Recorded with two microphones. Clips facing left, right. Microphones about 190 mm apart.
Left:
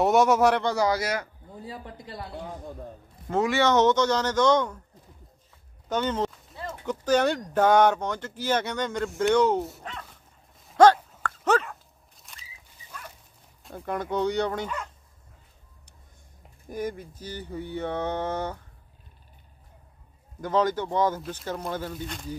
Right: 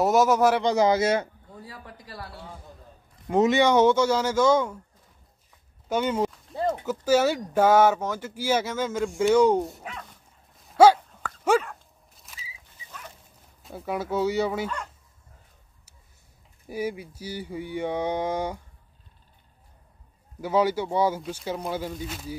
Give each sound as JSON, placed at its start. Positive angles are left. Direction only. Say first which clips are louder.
{"t": 0.0, "sound": "speech", "louder": "even", "side_deg": 0}
{"t": 0.6, "sound": "speech", "louder": "right 4 dB", "side_deg": -20}
{"t": 1.5, "sound": "speech", "louder": "left 4 dB", "side_deg": 20}
{"t": 3.3, "sound": "speech", "louder": "right 3 dB", "side_deg": -20}
{"t": 5.9, "sound": "speech", "louder": "right 2 dB", "side_deg": -10}
{"t": 10.7, "sound": "dog", "louder": "right 1 dB", "side_deg": -5}
{"t": 13.7, "sound": "speech", "louder": "right 1 dB", "side_deg": -5}
{"t": 16.6, "sound": "speech", "louder": "right 2 dB", "side_deg": -10}
{"t": 20.3, "sound": "speech", "louder": "right 1 dB", "side_deg": -10}